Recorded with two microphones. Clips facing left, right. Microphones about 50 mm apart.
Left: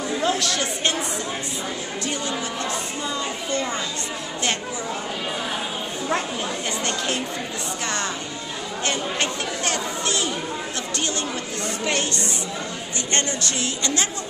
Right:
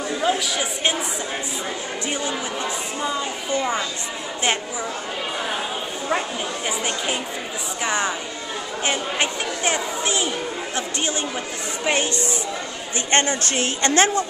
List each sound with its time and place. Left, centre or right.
0.2 s speech: centre
2.0 s speech: centre
6.8 s speech: centre
13.1 s a woman's voice: right